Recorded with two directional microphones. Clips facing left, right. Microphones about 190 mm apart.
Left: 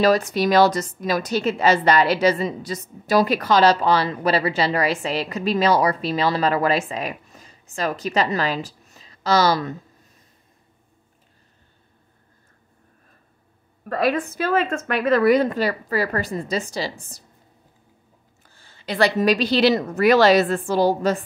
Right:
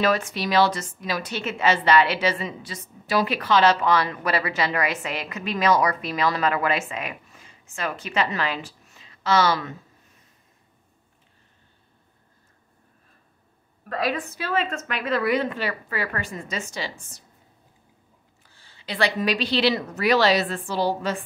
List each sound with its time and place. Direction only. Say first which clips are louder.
0.0 s a woman's voice: left 5 dB; 40° left (ahead or behind)
13.9 s a woman's voice: left 5 dB; 50° left (ahead or behind)
18.4 s a woman's voice: left 6 dB; 45° left (ahead or behind)